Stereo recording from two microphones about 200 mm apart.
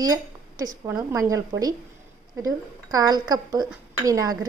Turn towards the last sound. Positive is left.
turn(degrees=-20)  # may be behind; listen again after turning